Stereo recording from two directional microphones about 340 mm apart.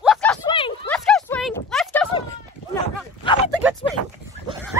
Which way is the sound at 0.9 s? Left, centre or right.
Centre.